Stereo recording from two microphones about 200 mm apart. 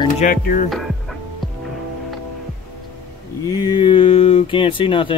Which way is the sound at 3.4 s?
20° left (ahead or behind).